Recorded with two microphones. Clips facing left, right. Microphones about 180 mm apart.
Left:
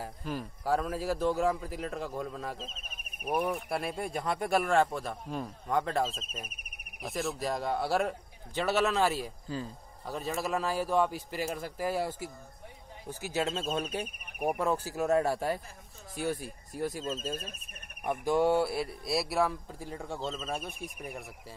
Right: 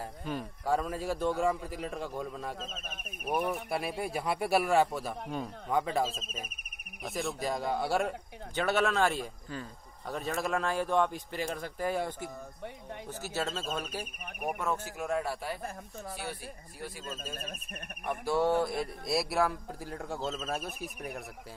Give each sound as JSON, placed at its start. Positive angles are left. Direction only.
{"t": 0.0, "sound": "speech", "side_deg": 0}
{"t": 14.6, "sound": "speech", "side_deg": 35}
{"t": 18.0, "sound": "speech", "side_deg": 15}